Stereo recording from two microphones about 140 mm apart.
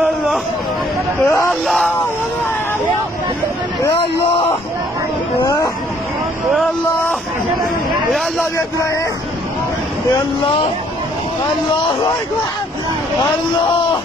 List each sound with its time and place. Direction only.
1.2 s speech: 20° left (ahead or behind)
1.5 s speech: centre (ahead or behind)
5.4 s speech: 30° left (ahead or behind)